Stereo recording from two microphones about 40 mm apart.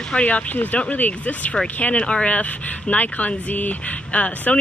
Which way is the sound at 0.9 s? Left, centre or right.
Left.